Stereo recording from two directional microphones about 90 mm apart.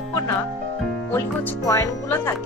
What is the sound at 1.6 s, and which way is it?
Speech, 40° left (ahead or behind).